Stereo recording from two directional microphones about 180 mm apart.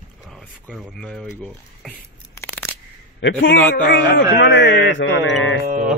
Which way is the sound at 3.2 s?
90° left.